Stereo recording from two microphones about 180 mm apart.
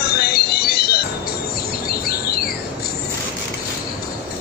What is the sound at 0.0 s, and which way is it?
Music, 60° left (ahead or behind).